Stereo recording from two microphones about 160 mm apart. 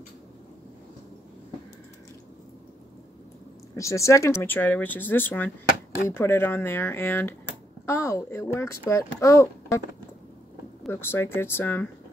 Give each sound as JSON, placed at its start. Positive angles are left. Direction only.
{"t": 3.7, "sound": "speech", "side_deg": 20}
{"t": 10.9, "sound": "speech", "side_deg": 15}